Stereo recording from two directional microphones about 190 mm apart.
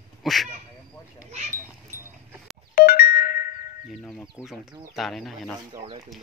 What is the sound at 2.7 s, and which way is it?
Music, 50° left (ahead or behind).